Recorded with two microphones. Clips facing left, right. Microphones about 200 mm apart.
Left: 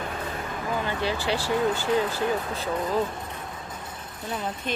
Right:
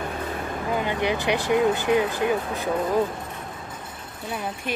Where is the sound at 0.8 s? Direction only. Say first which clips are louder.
Right 4 dB; 15° right (ahead or behind).